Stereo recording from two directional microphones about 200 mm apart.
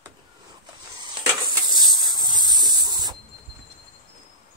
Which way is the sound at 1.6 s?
20° right (ahead or behind).